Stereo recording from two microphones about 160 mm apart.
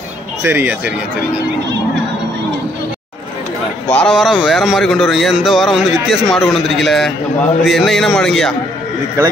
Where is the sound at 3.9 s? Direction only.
5° left (ahead or behind).